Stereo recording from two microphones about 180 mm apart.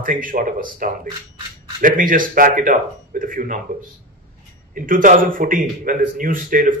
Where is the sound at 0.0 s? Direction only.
50° right (ahead or behind).